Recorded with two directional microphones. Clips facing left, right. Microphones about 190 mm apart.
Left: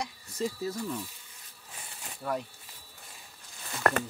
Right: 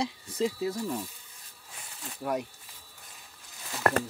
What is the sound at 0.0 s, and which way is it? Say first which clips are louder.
Speech: right 4 dB; 25° right (ahead or behind).